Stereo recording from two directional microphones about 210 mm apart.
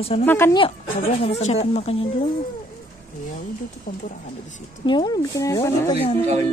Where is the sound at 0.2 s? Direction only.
10° left (ahead or behind).